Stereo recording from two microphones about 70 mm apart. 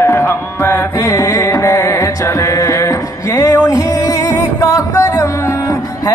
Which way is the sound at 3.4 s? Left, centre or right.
Left.